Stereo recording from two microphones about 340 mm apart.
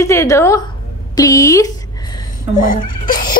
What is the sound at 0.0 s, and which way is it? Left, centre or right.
A woman's voice, centre.